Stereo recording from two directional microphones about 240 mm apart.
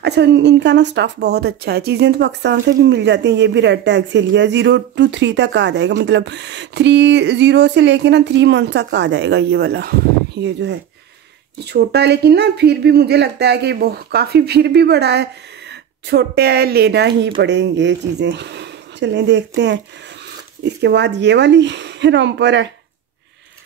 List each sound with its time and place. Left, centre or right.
0.0 s speech: right